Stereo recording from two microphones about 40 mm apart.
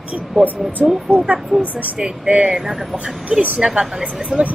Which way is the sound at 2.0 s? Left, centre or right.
Right.